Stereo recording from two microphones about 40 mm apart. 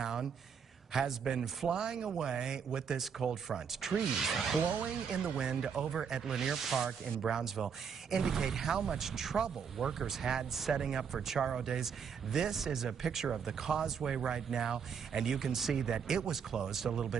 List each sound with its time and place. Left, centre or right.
0.0 s a sound: centre
0.9 s speech: centre
5.2 s speech: centre